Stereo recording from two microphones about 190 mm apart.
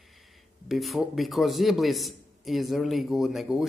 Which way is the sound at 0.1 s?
Centre (ahead or behind).